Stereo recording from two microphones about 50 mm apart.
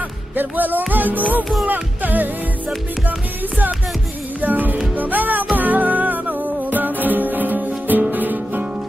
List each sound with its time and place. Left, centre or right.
0.4 s music: right
4.4 s music: right